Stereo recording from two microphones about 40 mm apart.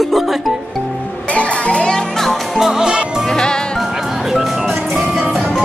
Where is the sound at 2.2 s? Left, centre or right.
Centre.